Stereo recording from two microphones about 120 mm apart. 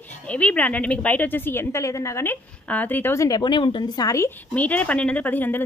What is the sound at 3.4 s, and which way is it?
Speech, 40° left (ahead or behind).